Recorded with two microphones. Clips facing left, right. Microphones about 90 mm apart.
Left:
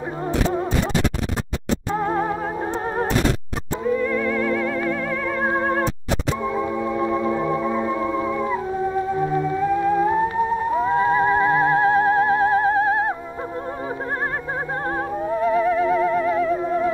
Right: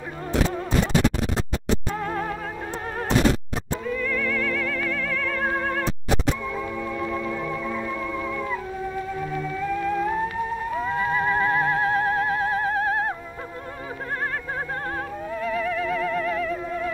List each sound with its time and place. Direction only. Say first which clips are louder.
2.0 s music: left 6 dB; 25° left (ahead or behind)
3.8 s music: left 7 dB; 25° left (ahead or behind)
15.2 s theremin: left 8 dB; 30° left (ahead or behind)